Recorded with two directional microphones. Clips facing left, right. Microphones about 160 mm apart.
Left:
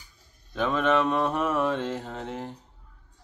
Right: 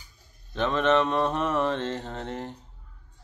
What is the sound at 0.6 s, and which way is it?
Mantra, 5° left (ahead or behind).